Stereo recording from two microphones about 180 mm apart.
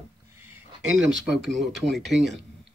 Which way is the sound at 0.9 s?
5° right (ahead or behind).